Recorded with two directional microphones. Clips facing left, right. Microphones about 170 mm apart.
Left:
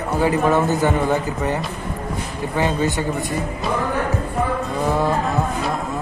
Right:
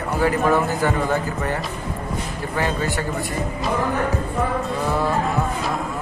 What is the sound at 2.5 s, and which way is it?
Speech, 20° left (ahead or behind).